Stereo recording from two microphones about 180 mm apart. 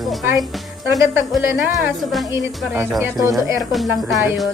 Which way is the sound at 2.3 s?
10° right (ahead or behind).